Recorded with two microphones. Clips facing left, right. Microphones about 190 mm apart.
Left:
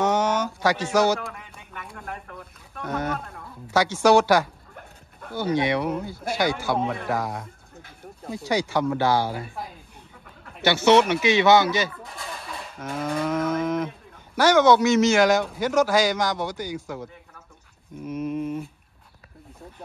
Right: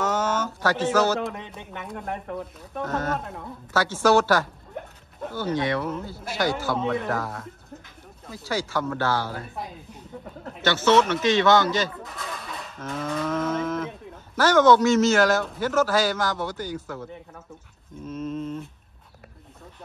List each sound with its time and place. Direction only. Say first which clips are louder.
0.0 s a sound: left 3 dB; 15° left (ahead or behind)
1.2 s speech: right 7 dB; 20° right (ahead or behind)
2.9 s a man's voice: left 1 dB; 15° left (ahead or behind)
10.6 s a man's voice: left 2 dB; 15° left (ahead or behind)
12.0 s livestock: right 1 dB; centre (ahead or behind)
14.3 s a man's voice: even; 10° left (ahead or behind)